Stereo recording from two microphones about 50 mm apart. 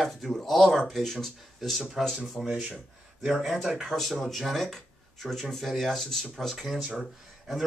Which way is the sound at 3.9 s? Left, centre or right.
Centre.